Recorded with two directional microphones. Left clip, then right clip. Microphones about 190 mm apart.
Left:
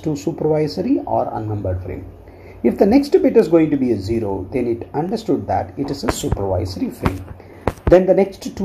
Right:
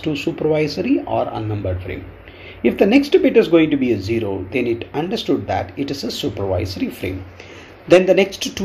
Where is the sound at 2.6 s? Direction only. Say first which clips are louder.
Even; 5° right (ahead or behind).